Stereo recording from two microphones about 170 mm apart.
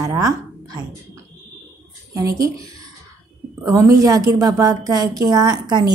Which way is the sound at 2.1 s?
20° right (ahead or behind).